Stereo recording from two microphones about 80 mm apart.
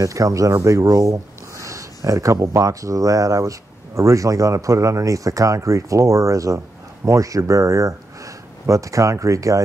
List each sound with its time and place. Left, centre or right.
0.0 s speech: right